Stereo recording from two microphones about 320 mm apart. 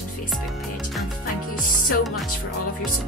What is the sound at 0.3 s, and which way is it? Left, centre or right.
Speech, centre.